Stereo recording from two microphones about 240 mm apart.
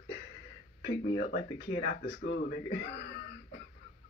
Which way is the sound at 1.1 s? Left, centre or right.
Left.